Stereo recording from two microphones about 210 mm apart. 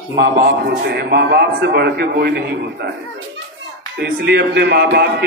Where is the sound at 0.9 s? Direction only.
50° right (ahead or behind).